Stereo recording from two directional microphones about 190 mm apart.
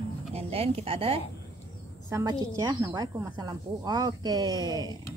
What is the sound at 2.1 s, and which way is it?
A woman's voice, 15° right (ahead or behind).